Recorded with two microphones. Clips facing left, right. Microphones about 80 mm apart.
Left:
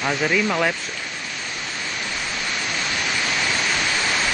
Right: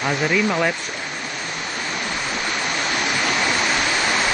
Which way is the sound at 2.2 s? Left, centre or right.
Centre.